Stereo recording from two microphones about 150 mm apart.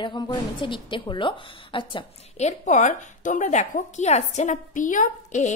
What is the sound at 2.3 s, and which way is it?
A woman's voice, 50° left (ahead or behind).